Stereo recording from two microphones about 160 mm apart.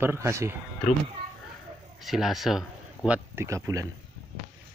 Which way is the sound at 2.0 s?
Centre (ahead or behind).